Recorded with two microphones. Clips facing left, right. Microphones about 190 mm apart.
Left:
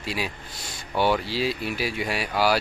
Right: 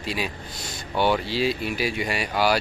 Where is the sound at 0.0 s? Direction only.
5° left (ahead or behind).